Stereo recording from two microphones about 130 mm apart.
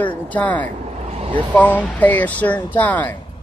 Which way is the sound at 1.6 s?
10° left (ahead or behind).